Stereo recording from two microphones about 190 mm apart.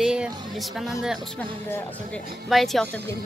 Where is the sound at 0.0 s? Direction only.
5° right (ahead or behind).